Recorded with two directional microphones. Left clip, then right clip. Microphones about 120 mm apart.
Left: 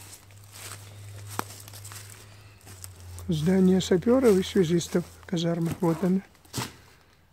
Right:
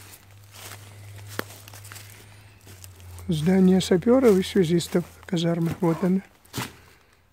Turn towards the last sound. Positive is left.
turn(degrees=-30)  # may be behind; listen again after turning